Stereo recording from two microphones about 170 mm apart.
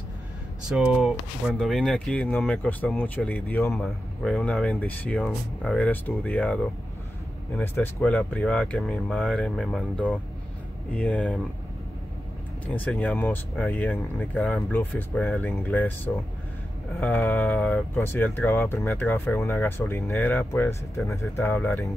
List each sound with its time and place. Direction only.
0.7 s speech: 5° right (ahead or behind)
12.7 s speech: 5° left (ahead or behind)